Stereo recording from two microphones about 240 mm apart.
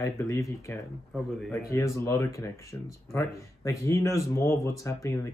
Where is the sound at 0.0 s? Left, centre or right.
Centre.